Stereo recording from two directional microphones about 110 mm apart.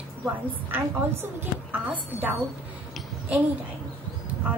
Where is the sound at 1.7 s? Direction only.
15° right (ahead or behind).